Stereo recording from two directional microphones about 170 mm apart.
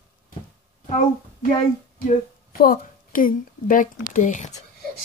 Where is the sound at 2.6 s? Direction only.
55° left (ahead or behind).